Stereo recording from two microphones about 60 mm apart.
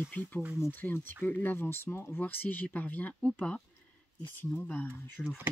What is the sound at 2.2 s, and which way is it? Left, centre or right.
Speech, left.